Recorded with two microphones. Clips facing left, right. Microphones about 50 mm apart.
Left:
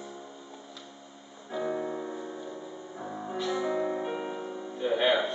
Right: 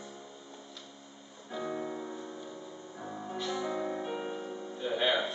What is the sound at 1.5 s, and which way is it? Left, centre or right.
Music, centre.